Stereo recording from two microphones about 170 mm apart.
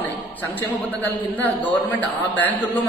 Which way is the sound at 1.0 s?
10° left (ahead or behind).